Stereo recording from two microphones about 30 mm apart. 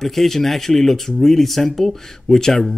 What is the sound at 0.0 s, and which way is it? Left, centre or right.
Speech, centre.